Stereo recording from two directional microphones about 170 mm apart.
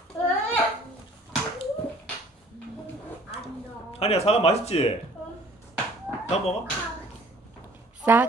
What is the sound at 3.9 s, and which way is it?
Speech, 35° left (ahead or behind).